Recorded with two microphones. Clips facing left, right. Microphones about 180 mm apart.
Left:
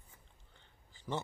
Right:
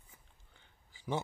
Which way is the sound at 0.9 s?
10° right (ahead or behind).